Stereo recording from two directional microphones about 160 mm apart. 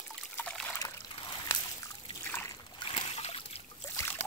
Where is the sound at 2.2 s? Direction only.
15° left (ahead or behind).